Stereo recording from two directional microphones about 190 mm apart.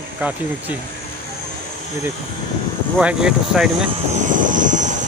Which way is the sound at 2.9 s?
5° right (ahead or behind).